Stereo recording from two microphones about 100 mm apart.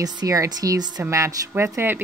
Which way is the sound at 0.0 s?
40° right (ahead or behind).